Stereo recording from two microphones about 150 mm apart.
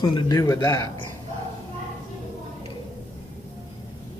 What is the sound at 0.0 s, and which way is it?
Speech, 25° left (ahead or behind).